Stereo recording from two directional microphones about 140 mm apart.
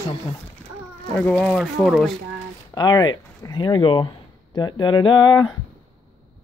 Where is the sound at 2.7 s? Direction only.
30° left (ahead or behind).